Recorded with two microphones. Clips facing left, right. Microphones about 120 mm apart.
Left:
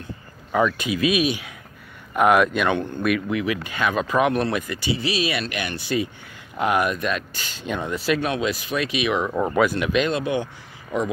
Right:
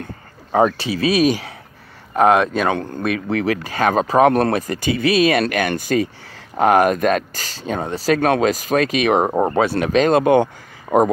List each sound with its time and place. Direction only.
0.5 s speech: 40° right (ahead or behind)
2.1 s speech: 30° right (ahead or behind)
4.3 s speech: 50° right (ahead or behind)